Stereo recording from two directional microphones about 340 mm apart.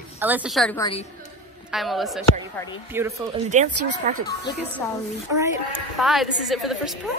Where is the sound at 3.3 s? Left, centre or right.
Right.